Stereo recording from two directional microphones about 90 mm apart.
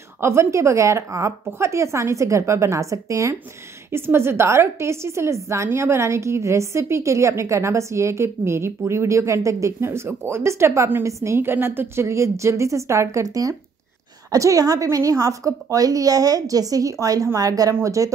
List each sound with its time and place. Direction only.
0.2 s a woman's voice: 30° right (ahead or behind)